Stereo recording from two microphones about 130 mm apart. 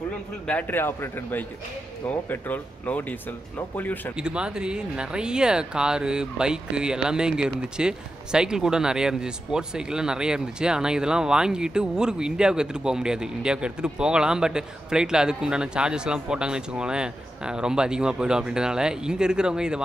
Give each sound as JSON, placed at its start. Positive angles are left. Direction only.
{"t": 0.5, "sound": "speech", "side_deg": 15}
{"t": 4.2, "sound": "speech", "side_deg": -5}